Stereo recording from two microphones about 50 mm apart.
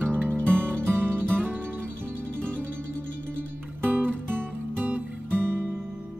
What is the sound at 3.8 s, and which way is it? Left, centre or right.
Music, right.